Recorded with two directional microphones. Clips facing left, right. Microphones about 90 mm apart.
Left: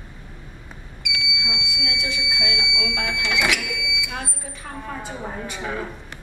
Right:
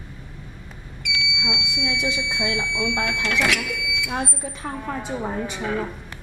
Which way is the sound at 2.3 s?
30° right (ahead or behind).